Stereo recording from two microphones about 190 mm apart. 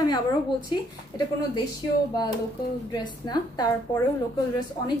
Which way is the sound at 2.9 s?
20° left (ahead or behind).